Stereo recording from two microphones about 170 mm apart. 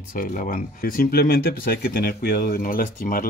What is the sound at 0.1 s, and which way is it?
Speech, 55° left (ahead or behind).